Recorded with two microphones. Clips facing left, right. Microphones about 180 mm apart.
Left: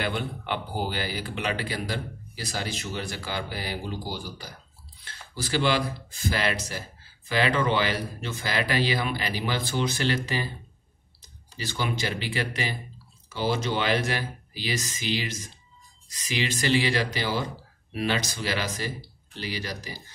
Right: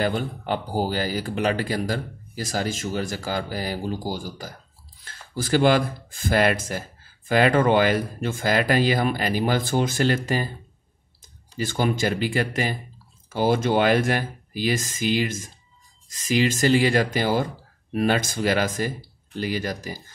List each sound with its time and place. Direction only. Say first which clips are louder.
0.0 s speech: right 5 dB; 40° right (ahead or behind)
11.5 s speech: right 7 dB; 50° right (ahead or behind)